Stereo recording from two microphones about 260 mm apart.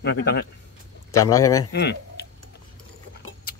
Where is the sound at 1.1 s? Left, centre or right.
Centre.